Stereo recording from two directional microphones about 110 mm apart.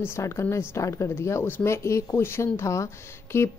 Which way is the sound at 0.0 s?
25° left (ahead or behind).